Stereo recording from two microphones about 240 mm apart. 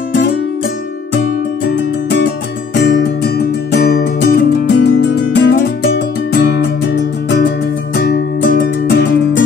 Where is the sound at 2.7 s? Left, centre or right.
Left.